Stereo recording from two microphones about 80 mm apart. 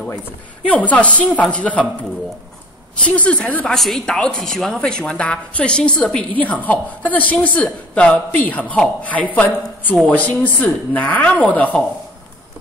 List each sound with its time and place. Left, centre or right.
0.7 s speech: centre
3.0 s speech: centre
3.7 s speech: centre